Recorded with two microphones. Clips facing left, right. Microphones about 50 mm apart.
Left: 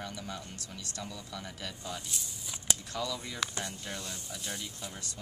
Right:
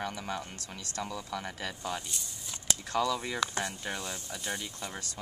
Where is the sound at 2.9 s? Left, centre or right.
Right.